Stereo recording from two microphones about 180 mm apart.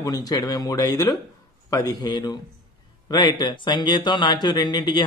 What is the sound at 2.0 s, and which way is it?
Speech, 20° left (ahead or behind).